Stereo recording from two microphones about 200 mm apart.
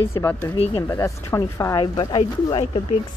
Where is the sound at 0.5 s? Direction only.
30° left (ahead or behind).